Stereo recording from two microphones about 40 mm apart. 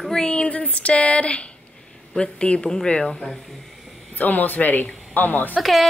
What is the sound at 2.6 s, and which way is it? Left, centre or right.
Speech, centre.